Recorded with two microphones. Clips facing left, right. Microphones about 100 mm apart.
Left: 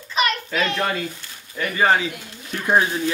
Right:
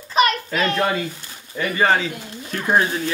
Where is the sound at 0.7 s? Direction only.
5° right (ahead or behind).